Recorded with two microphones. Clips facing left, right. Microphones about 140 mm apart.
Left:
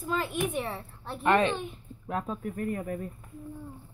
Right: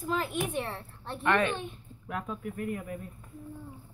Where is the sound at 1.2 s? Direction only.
25° left (ahead or behind); by 3.1 s 45° left (ahead or behind).